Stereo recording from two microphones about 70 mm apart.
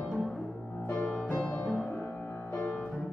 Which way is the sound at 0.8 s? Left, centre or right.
Left.